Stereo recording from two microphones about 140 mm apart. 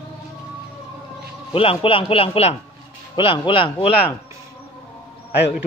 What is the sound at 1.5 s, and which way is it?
A man's voice, 40° left (ahead or behind).